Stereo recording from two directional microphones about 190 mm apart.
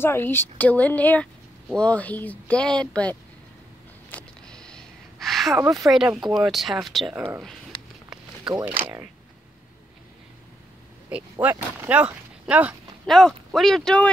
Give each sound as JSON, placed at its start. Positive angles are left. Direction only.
{"t": 0.0, "sound": "speech", "side_deg": 10}
{"t": 4.1, "sound": "a sound", "side_deg": 5}
{"t": 5.6, "sound": "speech", "side_deg": -15}
{"t": 6.3, "sound": "speech", "side_deg": 0}
{"t": 8.5, "sound": "speech", "side_deg": -10}
{"t": 11.3, "sound": "speech", "side_deg": -15}